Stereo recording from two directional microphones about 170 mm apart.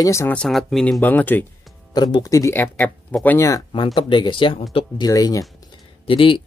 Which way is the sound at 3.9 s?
30° left (ahead or behind).